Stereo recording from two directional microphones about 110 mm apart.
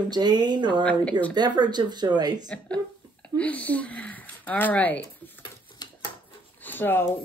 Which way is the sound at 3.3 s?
15° left (ahead or behind).